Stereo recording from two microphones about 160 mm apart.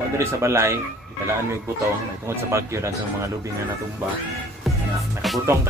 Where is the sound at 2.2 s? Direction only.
15° right (ahead or behind).